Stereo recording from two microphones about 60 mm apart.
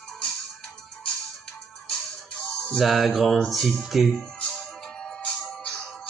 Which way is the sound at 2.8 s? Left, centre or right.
Centre.